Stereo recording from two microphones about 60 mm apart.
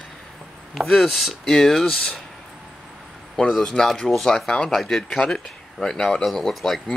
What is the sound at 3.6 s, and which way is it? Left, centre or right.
Speech, centre.